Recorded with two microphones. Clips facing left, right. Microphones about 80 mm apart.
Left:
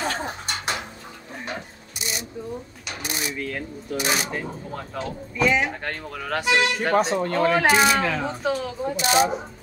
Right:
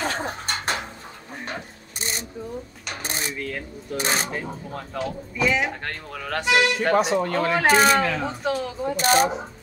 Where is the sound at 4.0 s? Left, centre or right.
Right.